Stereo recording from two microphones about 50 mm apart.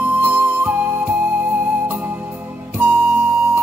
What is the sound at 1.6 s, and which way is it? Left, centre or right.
Music, right.